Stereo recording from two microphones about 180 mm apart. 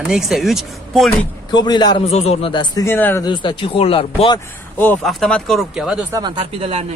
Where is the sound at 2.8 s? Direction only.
10° left (ahead or behind).